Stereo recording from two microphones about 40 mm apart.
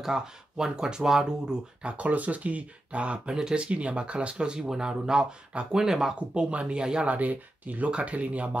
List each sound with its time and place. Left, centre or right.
0.0 s speech: centre
1.8 s speech: right
4.6 s speech: centre
5.5 s speech: right
5.8 s speech: centre
6.3 s speech: right
7.1 s speech: right